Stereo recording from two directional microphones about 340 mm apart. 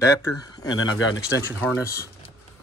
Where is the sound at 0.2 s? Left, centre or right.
Centre.